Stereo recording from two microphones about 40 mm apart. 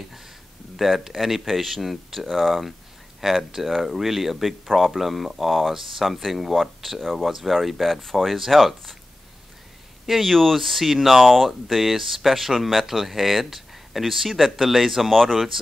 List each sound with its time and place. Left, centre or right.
0.7 s speech: centre
10.0 s speech: centre